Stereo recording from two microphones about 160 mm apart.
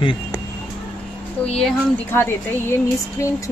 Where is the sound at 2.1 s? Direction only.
15° left (ahead or behind).